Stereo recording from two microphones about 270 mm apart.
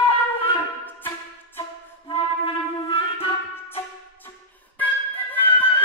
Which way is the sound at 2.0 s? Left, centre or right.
Centre.